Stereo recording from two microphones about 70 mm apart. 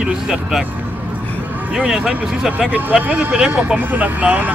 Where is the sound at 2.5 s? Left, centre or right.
Right.